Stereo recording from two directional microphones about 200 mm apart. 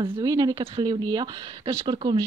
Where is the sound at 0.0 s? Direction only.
20° right (ahead or behind).